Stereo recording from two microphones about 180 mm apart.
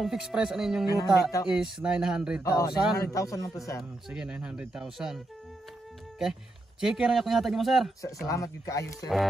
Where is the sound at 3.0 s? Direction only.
20° left (ahead or behind).